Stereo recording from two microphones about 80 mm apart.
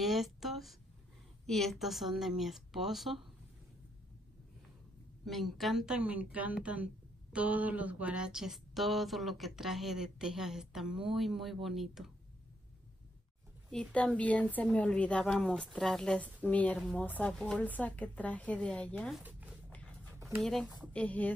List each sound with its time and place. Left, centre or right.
0.0 s a woman's voice: centre
5.2 s speech: centre
5.9 s speech: centre
13.7 s a woman's voice: centre
16.4 s a woman's voice: centre
16.7 s a woman's voice: centre
17.0 s a woman's voice: left
17.3 s a woman's voice: centre
19.2 s dog: centre
20.2 s a sound: right
20.4 s speech: centre
20.9 s a woman's voice: centre